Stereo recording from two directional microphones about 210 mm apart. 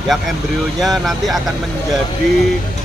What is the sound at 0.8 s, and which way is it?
Speech, centre (ahead or behind).